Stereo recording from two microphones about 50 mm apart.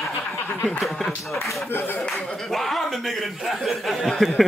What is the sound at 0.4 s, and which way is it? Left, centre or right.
Snicker, left.